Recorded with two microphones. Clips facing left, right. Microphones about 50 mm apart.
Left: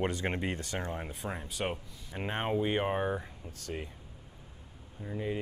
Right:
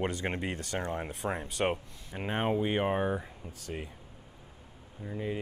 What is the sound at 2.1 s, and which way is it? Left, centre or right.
Speech, centre.